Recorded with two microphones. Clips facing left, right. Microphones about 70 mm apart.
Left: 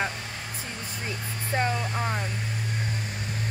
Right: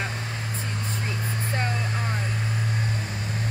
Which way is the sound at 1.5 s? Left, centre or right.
Left.